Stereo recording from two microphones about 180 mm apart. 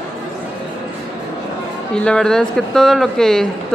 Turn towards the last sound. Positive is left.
turn(degrees=5)  # may be behind; listen again after turning